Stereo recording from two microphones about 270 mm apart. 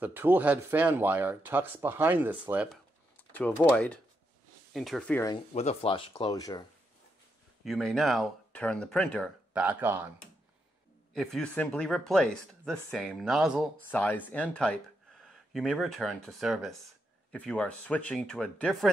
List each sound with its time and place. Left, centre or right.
0.0 s speech: centre
3.3 s speech: centre
5.5 s speech: left
7.6 s speech: centre
11.1 s speech: centre